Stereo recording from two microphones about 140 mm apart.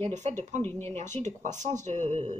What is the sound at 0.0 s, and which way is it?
Speech, 55° right (ahead or behind).